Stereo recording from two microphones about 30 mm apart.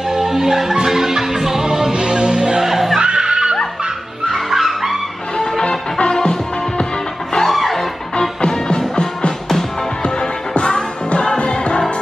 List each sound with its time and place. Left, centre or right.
0.1 s music: centre
1.9 s music: right
2.6 s music: centre
3.0 s neigh: right
4.5 s music: centre
7.4 s music: centre
8.4 s music: left